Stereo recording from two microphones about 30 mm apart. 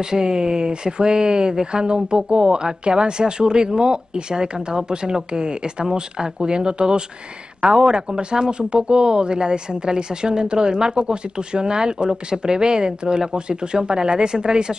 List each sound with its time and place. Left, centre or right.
0.0 s speech: right